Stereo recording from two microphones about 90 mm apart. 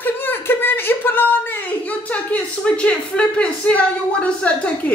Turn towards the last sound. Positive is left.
turn(degrees=15)  # may be behind; listen again after turning